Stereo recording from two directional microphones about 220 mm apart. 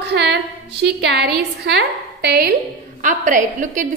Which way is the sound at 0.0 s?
50° right (ahead or behind).